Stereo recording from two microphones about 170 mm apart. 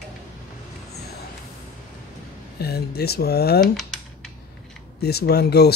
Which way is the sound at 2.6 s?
70° left (ahead or behind).